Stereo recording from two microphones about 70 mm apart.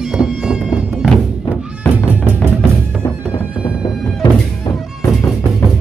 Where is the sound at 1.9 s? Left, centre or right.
Right.